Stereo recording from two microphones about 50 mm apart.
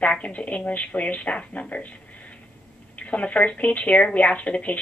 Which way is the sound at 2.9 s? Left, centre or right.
Left.